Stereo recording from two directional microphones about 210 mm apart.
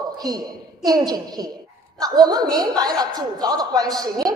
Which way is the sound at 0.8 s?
20° right (ahead or behind).